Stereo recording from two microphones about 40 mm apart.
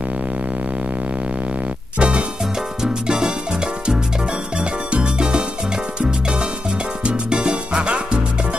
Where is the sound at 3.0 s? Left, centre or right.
Centre.